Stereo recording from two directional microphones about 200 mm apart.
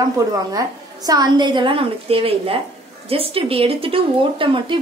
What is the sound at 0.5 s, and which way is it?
A woman's voice, 20° right (ahead or behind).